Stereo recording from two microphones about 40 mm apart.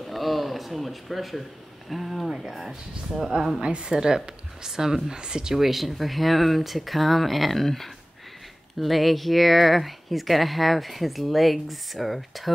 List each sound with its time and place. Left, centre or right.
0.0 s a sound: centre
1.9 s speech: centre
3.6 s a woman's voice: right
5.6 s speech: centre